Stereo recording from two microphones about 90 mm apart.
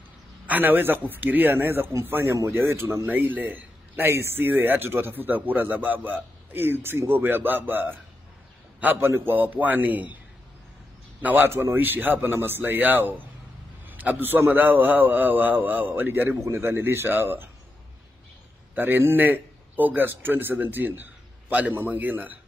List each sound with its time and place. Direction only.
0.5 s a man's voice: 20° right (ahead or behind)
11.2 s a man's voice: 25° right (ahead or behind)
18.8 s a man's voice: 25° right (ahead or behind)